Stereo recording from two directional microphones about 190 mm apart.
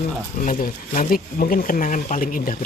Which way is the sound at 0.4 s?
45° left (ahead or behind).